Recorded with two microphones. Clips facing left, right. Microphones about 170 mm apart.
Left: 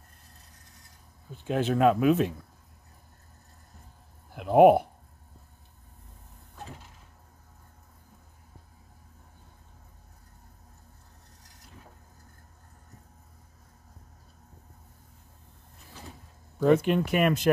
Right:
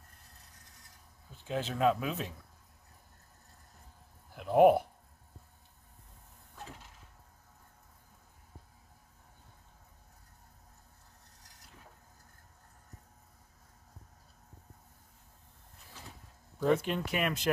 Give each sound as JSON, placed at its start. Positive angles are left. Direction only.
{"t": 1.4, "sound": "speech", "side_deg": 60}
{"t": 4.4, "sound": "a sound", "side_deg": 70}
{"t": 16.5, "sound": "speech", "side_deg": 70}